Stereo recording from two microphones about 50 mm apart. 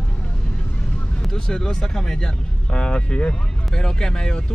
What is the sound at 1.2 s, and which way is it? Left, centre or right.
Speech, centre.